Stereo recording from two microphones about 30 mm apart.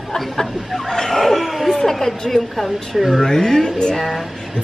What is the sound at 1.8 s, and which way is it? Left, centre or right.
Speech, centre.